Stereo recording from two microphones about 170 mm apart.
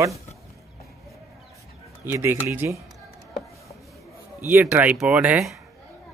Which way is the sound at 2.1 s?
15° right (ahead or behind).